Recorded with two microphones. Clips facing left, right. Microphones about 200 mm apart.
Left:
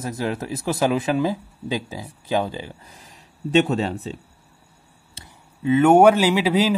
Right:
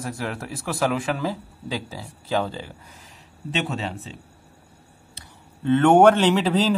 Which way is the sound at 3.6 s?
40° left (ahead or behind).